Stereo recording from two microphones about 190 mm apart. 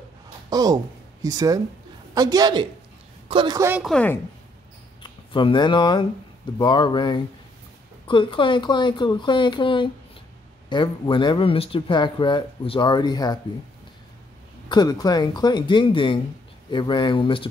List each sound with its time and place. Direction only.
0.5 s speech: 20° right (ahead or behind)
3.8 s speech: 5° left (ahead or behind)
5.0 s speech: 25° left (ahead or behind)
14.7 s speech: 20° left (ahead or behind)